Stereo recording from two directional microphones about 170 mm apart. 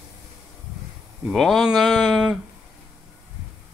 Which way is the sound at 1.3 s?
Centre (ahead or behind).